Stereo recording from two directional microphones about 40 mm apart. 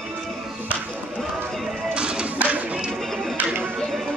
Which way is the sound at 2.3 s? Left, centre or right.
Right.